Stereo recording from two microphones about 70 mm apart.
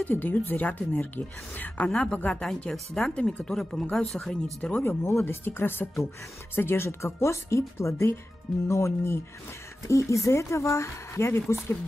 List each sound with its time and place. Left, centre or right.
0.0 s speech: left
1.8 s speech: centre
4.8 s speech: left